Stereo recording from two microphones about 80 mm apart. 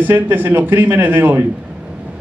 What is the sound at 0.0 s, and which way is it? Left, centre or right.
A man's voice, right.